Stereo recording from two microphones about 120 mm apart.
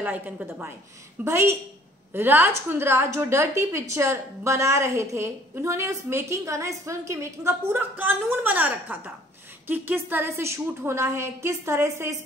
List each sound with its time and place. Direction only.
0.0 s a woman's voice: 15° right (ahead or behind)